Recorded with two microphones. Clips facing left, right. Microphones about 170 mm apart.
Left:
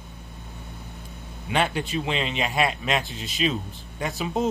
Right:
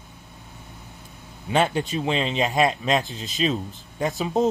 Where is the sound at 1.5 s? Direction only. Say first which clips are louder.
Right 3 dB; 35° right (ahead or behind).